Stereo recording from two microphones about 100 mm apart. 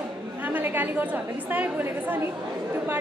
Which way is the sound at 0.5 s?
20° right (ahead or behind).